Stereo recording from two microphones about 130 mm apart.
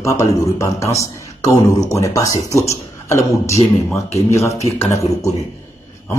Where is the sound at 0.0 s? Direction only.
25° left (ahead or behind).